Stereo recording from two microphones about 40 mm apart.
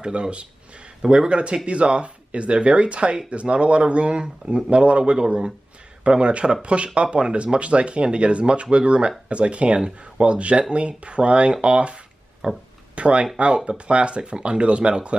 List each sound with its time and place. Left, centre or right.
0.0 s speech: right
11.5 s a sound: right
12.9 s speech: right